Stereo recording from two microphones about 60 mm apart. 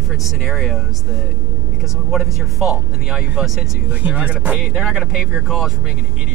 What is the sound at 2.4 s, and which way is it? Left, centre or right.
Speech, centre.